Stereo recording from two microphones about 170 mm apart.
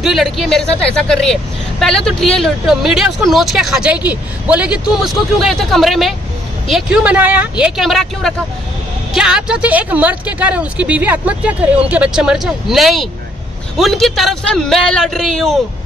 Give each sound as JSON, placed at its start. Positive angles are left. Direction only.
{"t": 0.0, "sound": "speech", "side_deg": 0}